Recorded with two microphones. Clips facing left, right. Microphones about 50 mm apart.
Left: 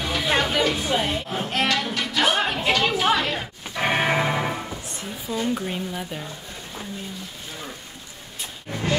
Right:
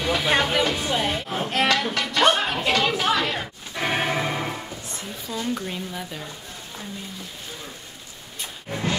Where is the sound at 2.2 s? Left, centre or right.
Centre.